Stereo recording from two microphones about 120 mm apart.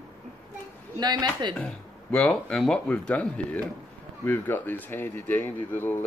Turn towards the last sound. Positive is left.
turn(degrees=15)  # may be behind; listen again after turning